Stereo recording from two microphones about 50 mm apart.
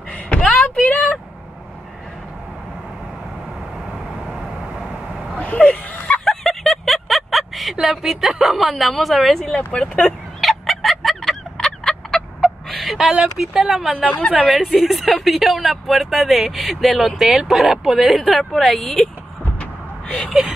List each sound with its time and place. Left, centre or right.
0.3 s a sound: left
4.3 s vehicle: centre
5.4 s a sound: left
6.2 s a sound: centre
7.8 s a woman's voice: centre
9.6 s speech: left
10.4 s fowl: centre
11.5 s turkey: centre
12.9 s speech: centre
19.6 s vehicle: left